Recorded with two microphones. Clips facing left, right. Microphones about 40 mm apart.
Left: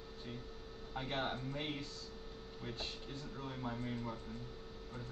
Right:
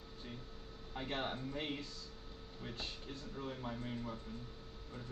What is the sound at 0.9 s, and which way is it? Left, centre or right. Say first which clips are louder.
Speech: left 1 dB; centre.